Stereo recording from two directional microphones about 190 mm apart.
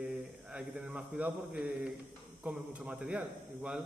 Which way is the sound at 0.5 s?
5° right (ahead or behind).